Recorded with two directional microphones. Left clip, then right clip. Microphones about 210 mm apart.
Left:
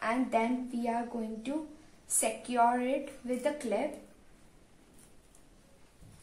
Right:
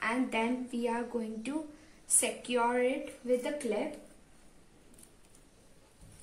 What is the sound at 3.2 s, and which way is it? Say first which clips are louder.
Speech: right 8 dB; 15° left (ahead or behind).